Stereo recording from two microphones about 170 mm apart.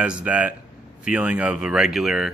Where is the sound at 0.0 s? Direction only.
5° right (ahead or behind).